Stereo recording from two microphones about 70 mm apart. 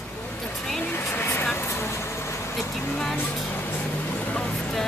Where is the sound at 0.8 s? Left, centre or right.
Left.